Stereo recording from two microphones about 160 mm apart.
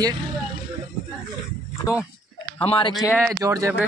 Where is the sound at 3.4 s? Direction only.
20° right (ahead or behind).